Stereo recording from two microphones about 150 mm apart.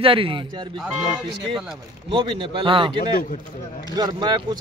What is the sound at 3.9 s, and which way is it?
Speech, 25° right (ahead or behind).